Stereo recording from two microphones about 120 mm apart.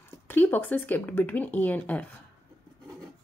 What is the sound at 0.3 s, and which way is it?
Speech, 15° left (ahead or behind).